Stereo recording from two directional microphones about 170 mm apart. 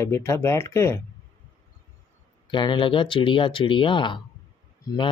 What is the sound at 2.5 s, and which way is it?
Speech, 30° left (ahead or behind).